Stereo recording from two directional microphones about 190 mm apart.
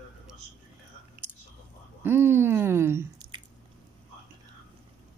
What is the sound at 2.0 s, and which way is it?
Speech, 10° right (ahead or behind).